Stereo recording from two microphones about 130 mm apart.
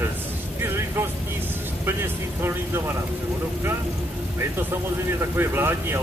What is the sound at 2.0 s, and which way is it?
Speech, 20° right (ahead or behind).